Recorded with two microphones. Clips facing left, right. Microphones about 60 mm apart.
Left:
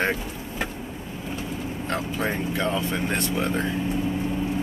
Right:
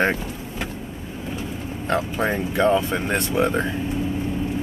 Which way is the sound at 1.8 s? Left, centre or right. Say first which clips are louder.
Right 5 dB; right.